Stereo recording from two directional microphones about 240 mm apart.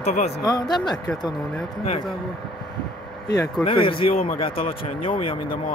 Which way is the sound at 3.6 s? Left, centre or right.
Left.